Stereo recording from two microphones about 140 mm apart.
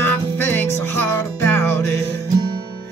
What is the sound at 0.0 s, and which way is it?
Music, 15° left (ahead or behind).